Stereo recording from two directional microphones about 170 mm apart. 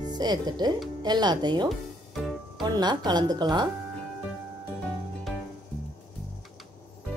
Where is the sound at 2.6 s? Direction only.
25° right (ahead or behind).